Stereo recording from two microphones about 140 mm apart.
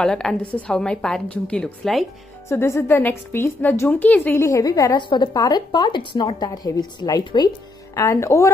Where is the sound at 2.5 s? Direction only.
20° left (ahead or behind).